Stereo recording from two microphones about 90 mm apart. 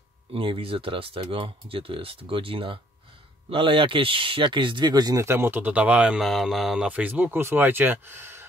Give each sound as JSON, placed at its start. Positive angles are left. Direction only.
{"t": 0.3, "sound": "speech", "side_deg": -80}
{"t": 3.4, "sound": "speech", "side_deg": -75}
{"t": 5.2, "sound": "speech", "side_deg": -25}
{"t": 6.2, "sound": "speech", "side_deg": 0}
{"t": 6.9, "sound": "speech", "side_deg": -15}